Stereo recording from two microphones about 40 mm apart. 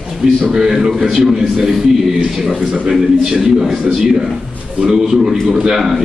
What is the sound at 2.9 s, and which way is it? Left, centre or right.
Speech, centre.